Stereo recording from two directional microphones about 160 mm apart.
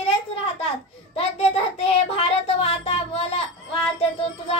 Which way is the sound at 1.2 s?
40° left (ahead or behind).